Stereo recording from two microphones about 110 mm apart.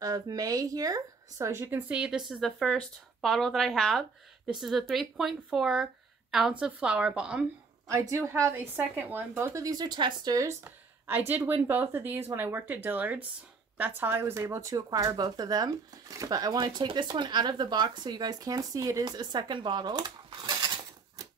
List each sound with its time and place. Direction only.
0.0 s speech: 30° right (ahead or behind)
2.0 s a woman's voice: 5° right (ahead or behind)
8.1 s speech: 30° right (ahead or behind)
8.5 s speech: 15° right (ahead or behind)
19.0 s a sound: 40° right (ahead or behind)